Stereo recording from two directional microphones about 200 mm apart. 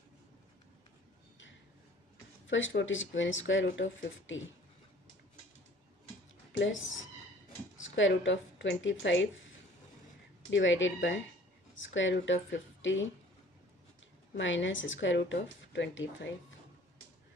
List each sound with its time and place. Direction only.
2.4 s speech: 70° left (ahead or behind)
6.5 s a woman's voice: 70° left (ahead or behind)
10.5 s speech: 70° left (ahead or behind)
14.3 s speech: 70° left (ahead or behind)